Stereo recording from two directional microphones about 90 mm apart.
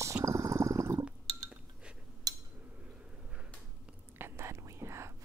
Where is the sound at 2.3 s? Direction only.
45° right (ahead or behind).